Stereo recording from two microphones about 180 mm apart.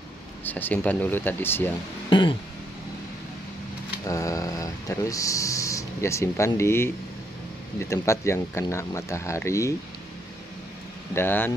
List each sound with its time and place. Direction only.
0.4 s speech: 10° left (ahead or behind)
2.0 s throat clearing: 25° left (ahead or behind)
4.1 s speech: 20° left (ahead or behind)
11.1 s speech: 10° left (ahead or behind)